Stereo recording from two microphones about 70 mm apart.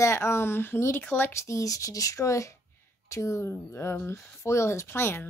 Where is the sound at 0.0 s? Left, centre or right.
Left.